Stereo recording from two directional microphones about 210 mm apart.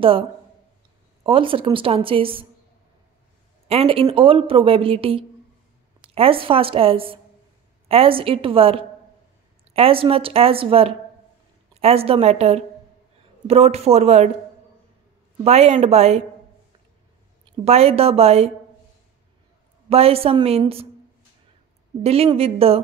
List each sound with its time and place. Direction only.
1.2 s a woman's voice: 25° right (ahead or behind)
3.6 s a woman's voice: 25° right (ahead or behind)
15.4 s speech: 30° right (ahead or behind)
17.5 s a woman's voice: 30° right (ahead or behind)
19.9 s a woman's voice: 30° right (ahead or behind)
22.0 s a woman's voice: 30° right (ahead or behind)